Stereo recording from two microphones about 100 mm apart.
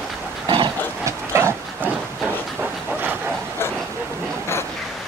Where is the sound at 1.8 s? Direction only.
15° right (ahead or behind).